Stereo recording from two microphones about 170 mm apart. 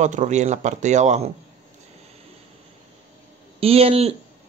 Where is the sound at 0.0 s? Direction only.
45° right (ahead or behind).